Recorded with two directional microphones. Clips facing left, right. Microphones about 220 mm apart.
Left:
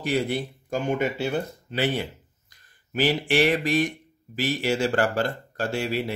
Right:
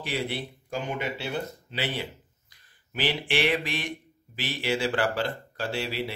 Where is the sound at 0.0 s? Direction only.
45° left (ahead or behind).